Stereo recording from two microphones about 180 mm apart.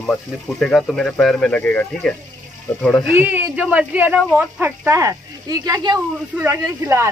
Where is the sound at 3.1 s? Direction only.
10° right (ahead or behind).